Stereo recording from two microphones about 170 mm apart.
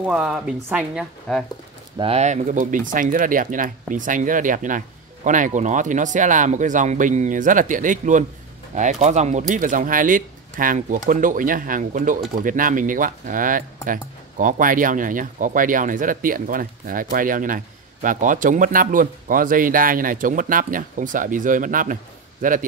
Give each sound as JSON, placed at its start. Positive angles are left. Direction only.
{"t": 0.0, "sound": "speech", "side_deg": -5}
{"t": 2.0, "sound": "speech", "side_deg": -35}